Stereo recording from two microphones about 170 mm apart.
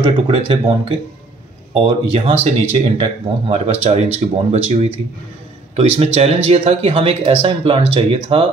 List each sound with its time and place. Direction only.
0.0 s speech: 35° right (ahead or behind)